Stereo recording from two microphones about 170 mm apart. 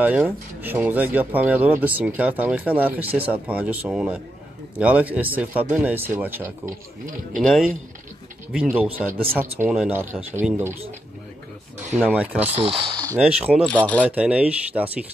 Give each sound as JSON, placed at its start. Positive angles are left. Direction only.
{"t": 0.0, "sound": "speech", "side_deg": -10}
{"t": 7.3, "sound": "speech", "side_deg": 0}
{"t": 12.1, "sound": "speech", "side_deg": -10}
{"t": 12.4, "sound": "speech", "side_deg": -40}
{"t": 13.2, "sound": "speech", "side_deg": -10}
{"t": 13.7, "sound": "speech", "side_deg": 10}
{"t": 14.0, "sound": "speech", "side_deg": -5}